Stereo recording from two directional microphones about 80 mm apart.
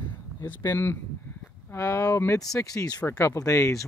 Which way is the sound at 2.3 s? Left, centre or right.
Left.